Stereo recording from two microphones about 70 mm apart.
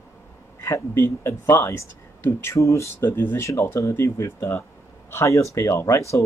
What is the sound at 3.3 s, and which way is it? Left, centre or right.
Speech, left.